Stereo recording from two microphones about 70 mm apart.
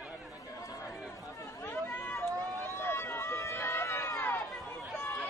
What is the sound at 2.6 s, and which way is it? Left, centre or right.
Run, left.